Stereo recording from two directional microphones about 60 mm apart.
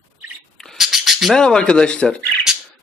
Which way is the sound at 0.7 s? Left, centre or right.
Centre.